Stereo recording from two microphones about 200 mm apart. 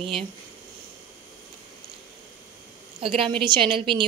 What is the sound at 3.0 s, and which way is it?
A woman's voice, 25° right (ahead or behind).